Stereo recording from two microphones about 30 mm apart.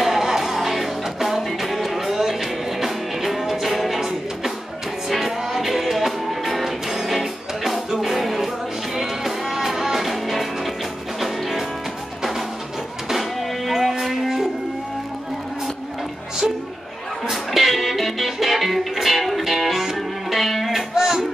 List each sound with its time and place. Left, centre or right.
0.0 s music: centre
5.0 s music: centre
17.3 s music: centre
20.3 s music: centre
20.9 s a sound: centre